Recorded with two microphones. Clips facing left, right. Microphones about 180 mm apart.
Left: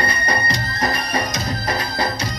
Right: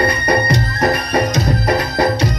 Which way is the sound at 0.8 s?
60° right (ahead or behind).